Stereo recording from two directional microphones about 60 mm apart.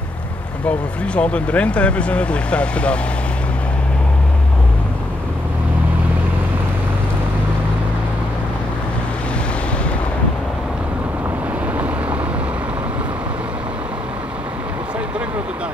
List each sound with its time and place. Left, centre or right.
0.7 s speech: centre
11.6 s vehicle: right